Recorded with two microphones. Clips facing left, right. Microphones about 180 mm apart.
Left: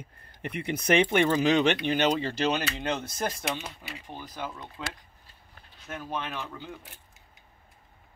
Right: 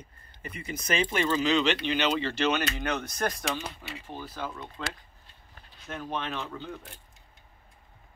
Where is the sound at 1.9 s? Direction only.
45° left (ahead or behind).